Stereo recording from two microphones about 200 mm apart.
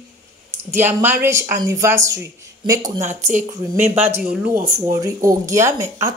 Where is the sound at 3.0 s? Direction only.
35° right (ahead or behind).